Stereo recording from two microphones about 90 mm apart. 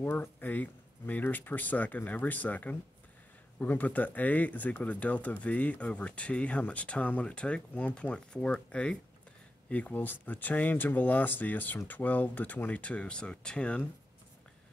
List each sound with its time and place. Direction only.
0.0 s speech: 20° left (ahead or behind)